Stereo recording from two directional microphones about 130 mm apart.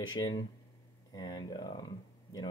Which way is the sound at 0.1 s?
30° left (ahead or behind).